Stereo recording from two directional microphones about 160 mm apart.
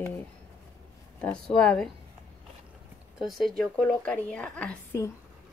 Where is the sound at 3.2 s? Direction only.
Centre (ahead or behind).